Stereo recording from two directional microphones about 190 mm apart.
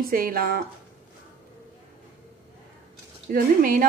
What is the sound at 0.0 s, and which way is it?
Speech, 50° right (ahead or behind).